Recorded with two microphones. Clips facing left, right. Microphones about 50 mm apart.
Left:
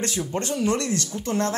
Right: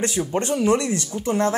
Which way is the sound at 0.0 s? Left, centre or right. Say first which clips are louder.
Right 4 dB; right.